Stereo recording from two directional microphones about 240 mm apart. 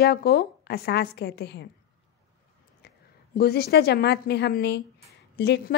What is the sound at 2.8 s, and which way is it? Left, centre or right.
A woman's voice, left.